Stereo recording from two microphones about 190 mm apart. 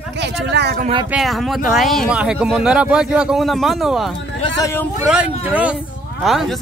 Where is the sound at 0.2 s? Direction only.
65° right (ahead or behind).